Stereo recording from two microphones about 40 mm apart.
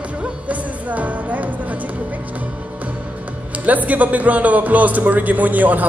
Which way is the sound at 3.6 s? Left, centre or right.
Right.